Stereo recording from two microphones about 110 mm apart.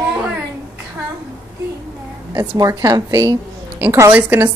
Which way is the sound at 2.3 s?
30° right (ahead or behind).